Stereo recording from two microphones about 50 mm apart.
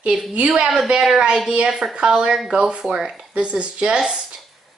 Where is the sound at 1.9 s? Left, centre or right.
Centre.